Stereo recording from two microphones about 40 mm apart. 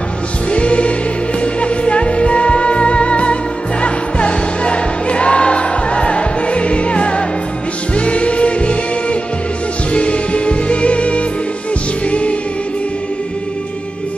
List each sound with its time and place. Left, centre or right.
0.5 s music: left